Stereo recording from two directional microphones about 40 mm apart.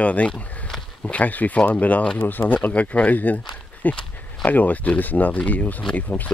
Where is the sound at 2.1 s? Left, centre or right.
Left.